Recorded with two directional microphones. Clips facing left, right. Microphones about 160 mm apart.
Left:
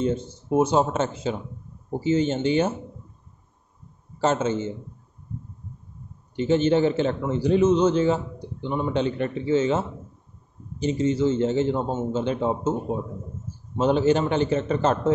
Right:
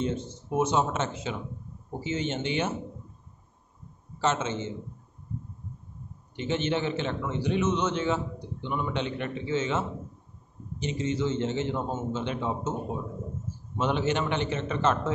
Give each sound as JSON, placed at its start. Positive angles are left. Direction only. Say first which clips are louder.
{"t": 0.0, "sound": "a man's voice", "louder": "left 5 dB", "side_deg": 35}
{"t": 4.2, "sound": "a man's voice", "louder": "left 5 dB", "side_deg": 35}
{"t": 6.3, "sound": "a man's voice", "louder": "left 8 dB", "side_deg": 35}
{"t": 13.7, "sound": "a man's voice", "louder": "left 7 dB", "side_deg": 35}